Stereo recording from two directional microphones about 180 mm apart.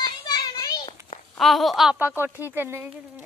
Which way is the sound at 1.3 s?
Centre (ahead or behind).